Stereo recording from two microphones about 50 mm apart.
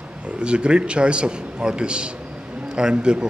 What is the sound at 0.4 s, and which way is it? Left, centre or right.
A man's voice, centre.